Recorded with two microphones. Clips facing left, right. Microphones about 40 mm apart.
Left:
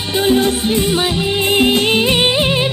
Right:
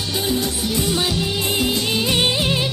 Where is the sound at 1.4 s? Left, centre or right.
Left.